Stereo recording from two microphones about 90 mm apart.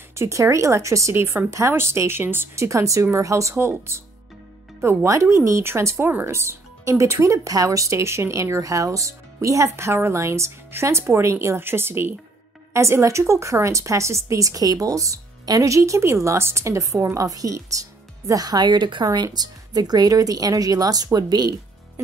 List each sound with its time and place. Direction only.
0.1 s speech: 35° right (ahead or behind); by 19.0 s 60° right (ahead or behind)
19.1 s speech: 50° right (ahead or behind)